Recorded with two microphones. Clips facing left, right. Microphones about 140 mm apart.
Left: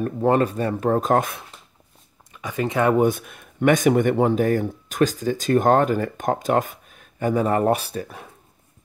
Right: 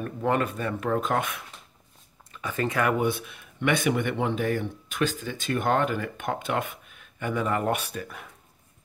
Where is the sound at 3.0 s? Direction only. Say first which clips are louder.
Left 6 dB; 45° left (ahead or behind).